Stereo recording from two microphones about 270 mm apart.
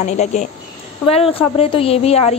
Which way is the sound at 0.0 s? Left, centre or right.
Left.